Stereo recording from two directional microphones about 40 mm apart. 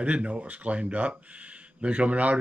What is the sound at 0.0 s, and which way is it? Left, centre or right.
Speech, right.